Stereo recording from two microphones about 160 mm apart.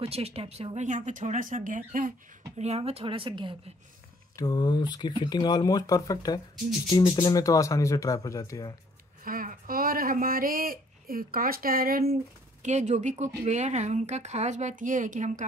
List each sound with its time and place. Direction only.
0.0 s speech: 40° right (ahead or behind); by 2.1 s 55° right (ahead or behind)
2.5 s a woman's voice: 40° right (ahead or behind)
4.4 s speech: 25° left (ahead or behind)
9.2 s speech: 60° right (ahead or behind)
12.6 s speech: 45° right (ahead or behind)